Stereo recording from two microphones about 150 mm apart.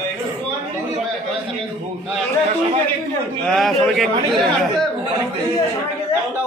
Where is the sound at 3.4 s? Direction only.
Centre (ahead or behind).